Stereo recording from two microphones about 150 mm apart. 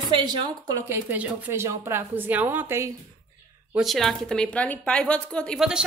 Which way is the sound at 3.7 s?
Centre (ahead or behind).